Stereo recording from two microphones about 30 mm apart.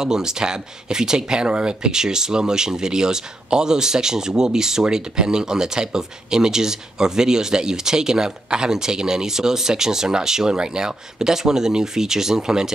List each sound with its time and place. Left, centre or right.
0.0 s speech: right